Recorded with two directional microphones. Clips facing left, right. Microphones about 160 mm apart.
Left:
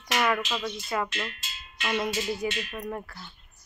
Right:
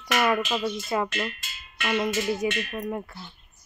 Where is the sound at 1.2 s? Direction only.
55° right (ahead or behind).